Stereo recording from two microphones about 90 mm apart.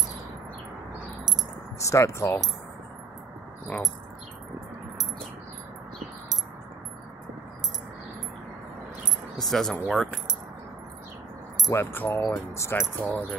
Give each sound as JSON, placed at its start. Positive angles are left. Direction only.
{"t": 1.8, "sound": "speech", "side_deg": 35}
{"t": 9.4, "sound": "speech", "side_deg": 5}
{"t": 11.7, "sound": "speech", "side_deg": 25}
{"t": 13.0, "sound": "speech", "side_deg": 15}